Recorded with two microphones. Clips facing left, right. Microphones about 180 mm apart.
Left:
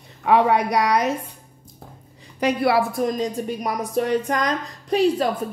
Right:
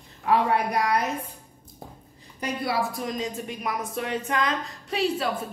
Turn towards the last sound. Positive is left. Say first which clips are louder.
# left 7 dB
turn(degrees=40)  # may be behind; listen again after turning